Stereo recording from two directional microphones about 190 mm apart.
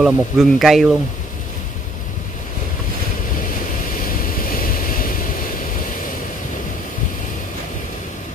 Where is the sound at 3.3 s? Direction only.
45° left (ahead or behind).